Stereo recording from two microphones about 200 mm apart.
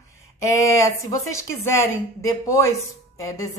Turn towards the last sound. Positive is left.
turn(degrees=15)  # may be behind; listen again after turning